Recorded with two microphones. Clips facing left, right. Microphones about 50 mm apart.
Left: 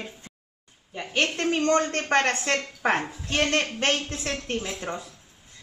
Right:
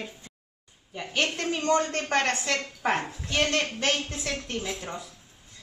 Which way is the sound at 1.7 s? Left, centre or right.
Left.